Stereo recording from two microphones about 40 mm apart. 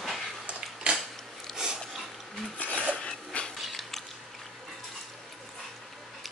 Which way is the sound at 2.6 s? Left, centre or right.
Left.